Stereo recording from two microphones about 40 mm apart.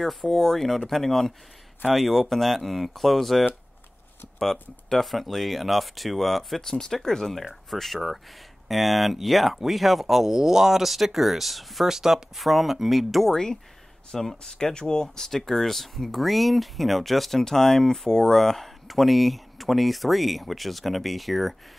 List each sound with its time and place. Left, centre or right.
0.0 s speech: centre
6.6 s speech: centre
13.3 s speech: centre